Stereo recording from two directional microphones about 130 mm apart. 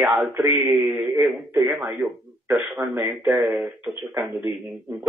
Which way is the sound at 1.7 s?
Centre (ahead or behind).